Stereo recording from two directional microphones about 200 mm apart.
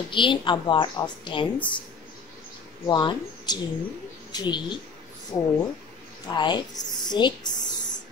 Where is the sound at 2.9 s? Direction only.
20° left (ahead or behind).